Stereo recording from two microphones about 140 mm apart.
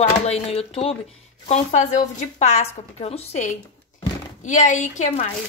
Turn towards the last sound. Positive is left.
turn(degrees=55)  # may be behind; listen again after turning